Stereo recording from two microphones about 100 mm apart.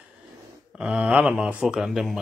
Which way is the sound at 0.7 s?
10° right (ahead or behind).